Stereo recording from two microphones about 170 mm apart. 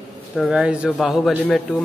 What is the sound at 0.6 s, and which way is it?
Music, 5° right (ahead or behind).